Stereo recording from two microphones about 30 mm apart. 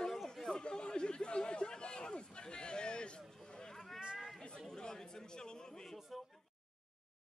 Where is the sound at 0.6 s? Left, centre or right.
Left.